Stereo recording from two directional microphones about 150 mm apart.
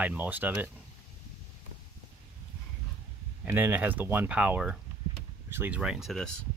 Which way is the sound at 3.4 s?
15° right (ahead or behind).